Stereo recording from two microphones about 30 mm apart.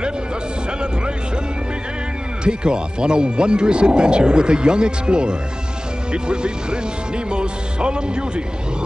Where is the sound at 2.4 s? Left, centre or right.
Right.